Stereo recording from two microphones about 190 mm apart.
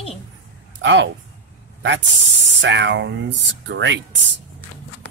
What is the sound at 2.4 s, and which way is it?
Speech, 70° right (ahead or behind).